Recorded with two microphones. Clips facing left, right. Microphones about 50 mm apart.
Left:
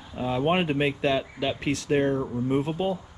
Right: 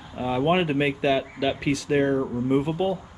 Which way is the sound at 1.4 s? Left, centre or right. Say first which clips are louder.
Right 2 dB; right.